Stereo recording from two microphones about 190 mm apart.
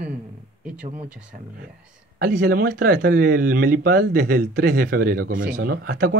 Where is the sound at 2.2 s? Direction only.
45° right (ahead or behind).